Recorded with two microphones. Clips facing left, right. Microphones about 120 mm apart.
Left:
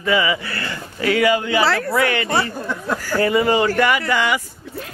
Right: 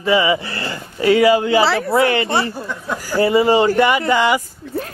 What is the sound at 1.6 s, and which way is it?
Speech, centre (ahead or behind).